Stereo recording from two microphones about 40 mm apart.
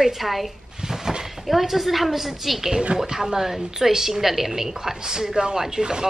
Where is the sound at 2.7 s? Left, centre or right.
Right.